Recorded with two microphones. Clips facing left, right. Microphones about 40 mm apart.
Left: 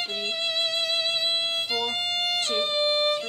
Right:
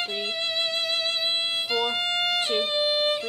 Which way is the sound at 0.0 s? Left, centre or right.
Centre.